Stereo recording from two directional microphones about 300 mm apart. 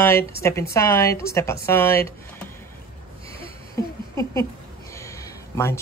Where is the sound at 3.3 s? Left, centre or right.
Centre.